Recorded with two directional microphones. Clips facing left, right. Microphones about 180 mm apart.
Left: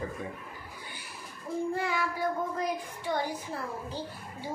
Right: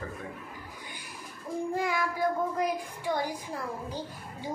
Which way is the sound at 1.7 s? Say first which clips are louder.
Right 1 dB; 15° right (ahead or behind).